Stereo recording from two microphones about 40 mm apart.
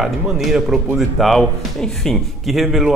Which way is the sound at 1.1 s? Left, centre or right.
Centre.